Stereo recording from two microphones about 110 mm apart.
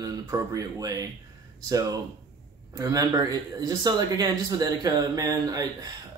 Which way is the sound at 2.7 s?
30° right (ahead or behind).